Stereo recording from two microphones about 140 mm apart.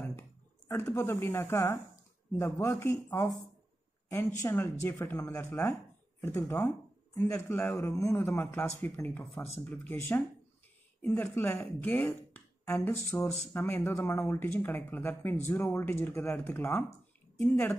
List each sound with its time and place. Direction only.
0.7 s a man's voice: 15° left (ahead or behind)
4.4 s a man's voice: 20° left (ahead or behind)